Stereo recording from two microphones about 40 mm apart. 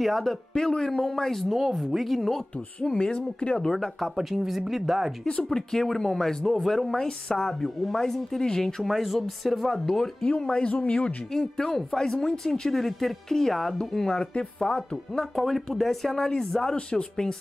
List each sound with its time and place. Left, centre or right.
0.0 s speech: centre; by 3.5 s left
3.7 s speech: centre
4.2 s speech: centre
5.2 s speech: left
5.5 s speech: centre
8.8 s speech: centre
10.2 s speech: left
10.8 s speech: left
11.3 s speech: centre
15.4 s speech: centre